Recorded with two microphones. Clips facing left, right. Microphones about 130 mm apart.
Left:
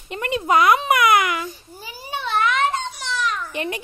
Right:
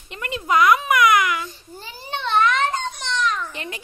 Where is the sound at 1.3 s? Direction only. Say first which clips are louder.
Left 1 dB; 10° left (ahead or behind).